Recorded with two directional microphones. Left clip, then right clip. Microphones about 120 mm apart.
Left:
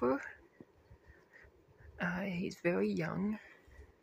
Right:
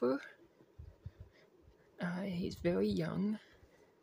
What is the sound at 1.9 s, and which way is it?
Speech, 10° left (ahead or behind).